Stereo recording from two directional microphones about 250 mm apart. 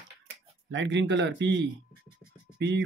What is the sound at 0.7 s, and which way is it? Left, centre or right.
Speech, right.